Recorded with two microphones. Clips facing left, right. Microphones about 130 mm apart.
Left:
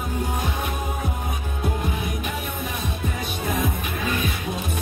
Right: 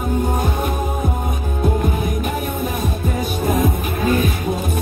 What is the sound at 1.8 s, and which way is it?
Music, 45° right (ahead or behind).